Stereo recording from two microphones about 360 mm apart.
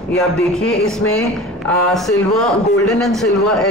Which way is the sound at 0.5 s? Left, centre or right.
Centre.